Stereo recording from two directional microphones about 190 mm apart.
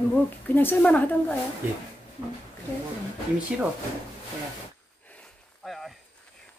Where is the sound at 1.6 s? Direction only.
10° right (ahead or behind).